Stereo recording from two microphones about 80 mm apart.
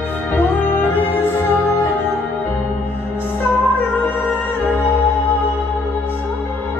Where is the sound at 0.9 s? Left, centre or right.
Left.